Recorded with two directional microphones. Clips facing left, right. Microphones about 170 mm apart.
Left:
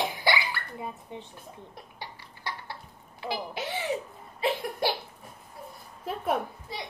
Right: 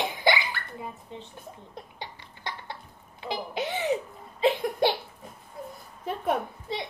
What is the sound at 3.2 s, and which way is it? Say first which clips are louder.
Speech: right 2 dB; 20° right (ahead or behind).